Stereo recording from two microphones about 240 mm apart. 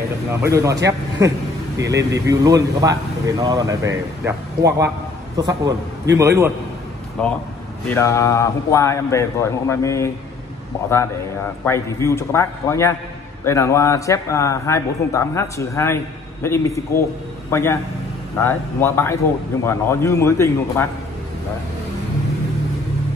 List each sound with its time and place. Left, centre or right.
0.3 s a man's voice: centre
1.8 s a man's voice: centre
7.2 s a man's voice: centre
11.6 s a man's voice: centre